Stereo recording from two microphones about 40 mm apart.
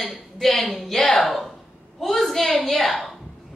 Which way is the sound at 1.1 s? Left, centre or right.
Centre.